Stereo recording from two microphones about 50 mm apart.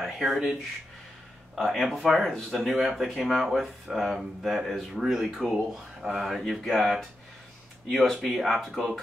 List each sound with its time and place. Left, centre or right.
0.0 s speech: centre